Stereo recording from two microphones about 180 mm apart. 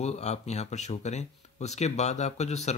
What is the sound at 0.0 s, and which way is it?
Speech, 35° left (ahead or behind).